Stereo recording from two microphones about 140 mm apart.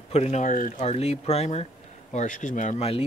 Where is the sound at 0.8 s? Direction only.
50° left (ahead or behind).